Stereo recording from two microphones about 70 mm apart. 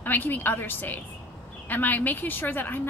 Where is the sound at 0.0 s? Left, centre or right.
Left.